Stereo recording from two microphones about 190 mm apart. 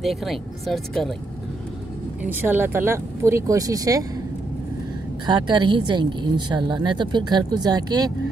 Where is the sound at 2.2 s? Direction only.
10° right (ahead or behind).